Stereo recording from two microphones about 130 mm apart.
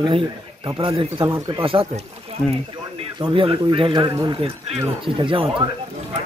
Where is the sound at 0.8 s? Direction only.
45° right (ahead or behind).